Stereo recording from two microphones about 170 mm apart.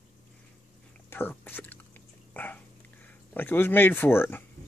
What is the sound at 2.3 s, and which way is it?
Dog, 10° left (ahead or behind).